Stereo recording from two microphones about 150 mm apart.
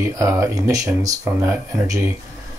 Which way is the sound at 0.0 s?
20° right (ahead or behind).